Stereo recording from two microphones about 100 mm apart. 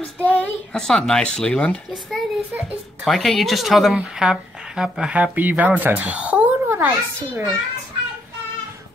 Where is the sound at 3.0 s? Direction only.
Centre (ahead or behind); by 7.4 s 20° right (ahead or behind).